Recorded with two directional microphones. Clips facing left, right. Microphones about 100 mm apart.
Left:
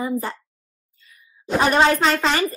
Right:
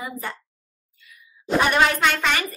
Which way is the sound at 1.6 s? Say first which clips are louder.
Left 4 dB; 35° left (ahead or behind).